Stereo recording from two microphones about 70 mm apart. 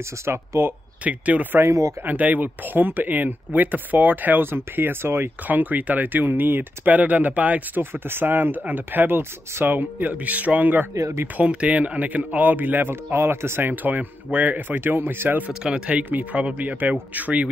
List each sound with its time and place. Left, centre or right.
0.2 s speech: right
1.0 s speech: right
1.6 s speech: right
2.0 s speech: right
15.6 s speech: centre